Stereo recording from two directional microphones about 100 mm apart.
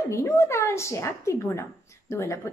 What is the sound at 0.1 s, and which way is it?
A woman's voice, 30° left (ahead or behind).